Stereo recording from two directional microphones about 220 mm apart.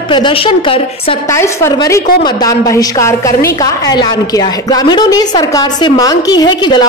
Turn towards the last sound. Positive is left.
turn(degrees=20)  # may be behind; listen again after turning